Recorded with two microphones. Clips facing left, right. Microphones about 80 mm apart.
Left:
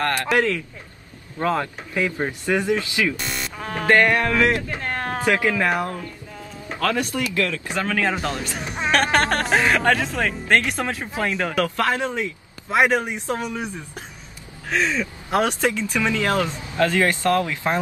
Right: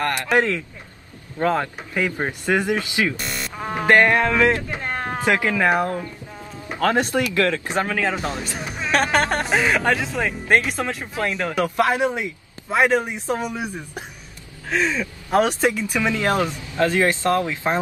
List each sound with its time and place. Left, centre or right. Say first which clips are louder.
0.0 s speech: even; right
3.2 s buzzer: even; centre
3.5 s speech: right 2 dB; centre
7.9 s speech: even; centre
10.8 s speech: even; centre
11.5 s speech: right 4 dB; centre
12.6 s speech: even; centre
13.3 s speech: right 3 dB; centre